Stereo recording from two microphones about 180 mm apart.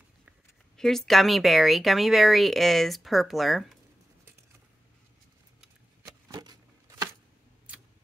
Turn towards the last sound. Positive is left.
turn(degrees=-20)  # may be behind; listen again after turning